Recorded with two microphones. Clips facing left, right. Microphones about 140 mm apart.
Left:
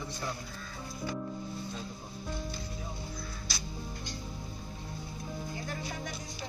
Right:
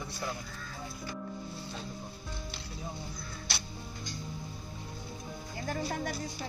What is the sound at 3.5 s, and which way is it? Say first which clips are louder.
Music: right 4 dB; 65° right (ahead or behind).